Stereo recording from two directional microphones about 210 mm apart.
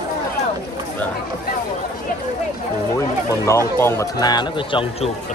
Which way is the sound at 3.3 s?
15° left (ahead or behind).